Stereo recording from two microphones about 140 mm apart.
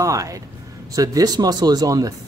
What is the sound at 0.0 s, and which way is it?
Speech, 25° right (ahead or behind).